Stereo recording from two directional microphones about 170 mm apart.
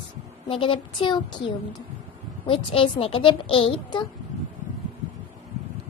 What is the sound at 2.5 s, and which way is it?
A child's voice, 35° left (ahead or behind).